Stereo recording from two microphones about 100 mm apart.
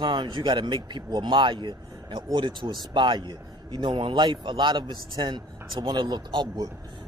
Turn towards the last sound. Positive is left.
turn(degrees=-50)  # may be behind; listen again after turning